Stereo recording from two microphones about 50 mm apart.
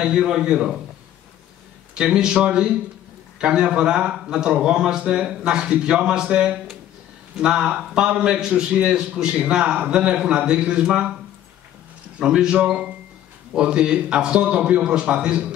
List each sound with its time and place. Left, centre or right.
0.0 s a man's voice: centre
2.0 s a man's voice: centre
12.2 s a man's voice: centre